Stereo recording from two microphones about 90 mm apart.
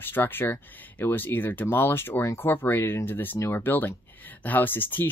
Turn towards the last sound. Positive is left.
turn(degrees=20)  # may be behind; listen again after turning